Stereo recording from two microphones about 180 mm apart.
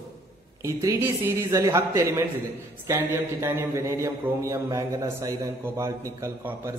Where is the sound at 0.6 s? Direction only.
15° right (ahead or behind).